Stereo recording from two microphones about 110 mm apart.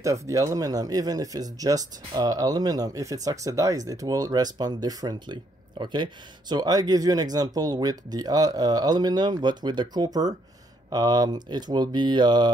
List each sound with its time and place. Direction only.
0.0 s speech: 30° right (ahead or behind)